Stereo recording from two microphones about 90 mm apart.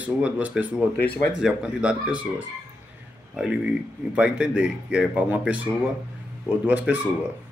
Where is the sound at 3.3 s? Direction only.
10° right (ahead or behind).